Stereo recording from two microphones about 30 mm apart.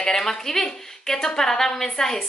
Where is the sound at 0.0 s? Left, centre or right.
Centre.